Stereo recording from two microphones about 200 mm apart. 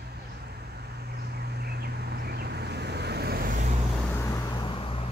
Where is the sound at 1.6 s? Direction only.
55° right (ahead or behind).